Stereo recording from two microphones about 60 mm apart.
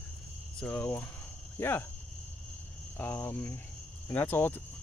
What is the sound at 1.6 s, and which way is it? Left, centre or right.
Speech, left.